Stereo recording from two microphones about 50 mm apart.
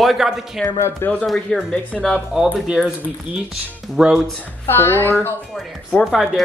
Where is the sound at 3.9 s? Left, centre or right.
Centre.